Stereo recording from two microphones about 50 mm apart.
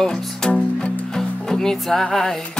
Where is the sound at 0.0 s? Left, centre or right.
Centre.